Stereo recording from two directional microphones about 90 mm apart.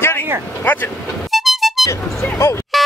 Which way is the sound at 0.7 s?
20° left (ahead or behind).